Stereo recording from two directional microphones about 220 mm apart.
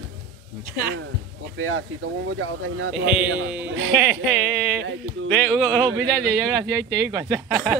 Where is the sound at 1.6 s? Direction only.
70° right (ahead or behind).